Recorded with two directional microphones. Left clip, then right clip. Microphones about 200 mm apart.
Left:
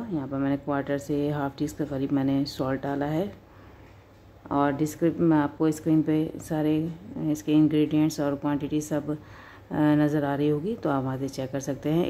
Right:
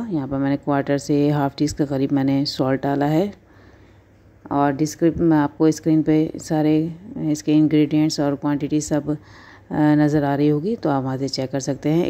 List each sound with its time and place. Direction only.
0.0 s speech: 30° right (ahead or behind)
4.5 s speech: 30° right (ahead or behind)